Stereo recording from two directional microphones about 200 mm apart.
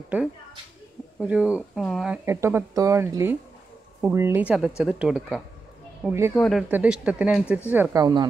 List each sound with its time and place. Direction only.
1.2 s speech: 5° right (ahead or behind)
2.2 s a woman's voice: 15° right (ahead or behind)